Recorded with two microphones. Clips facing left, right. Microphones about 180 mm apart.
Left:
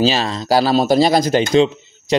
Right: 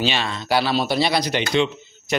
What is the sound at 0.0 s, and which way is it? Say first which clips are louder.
Speech: left 7 dB; 35° left (ahead or behind).